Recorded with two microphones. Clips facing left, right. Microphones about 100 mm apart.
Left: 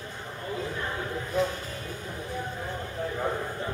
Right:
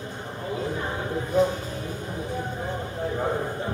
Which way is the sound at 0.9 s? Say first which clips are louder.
Right 6 dB; 25° right (ahead or behind).